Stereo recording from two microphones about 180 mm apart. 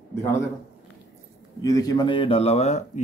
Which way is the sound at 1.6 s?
20° left (ahead or behind).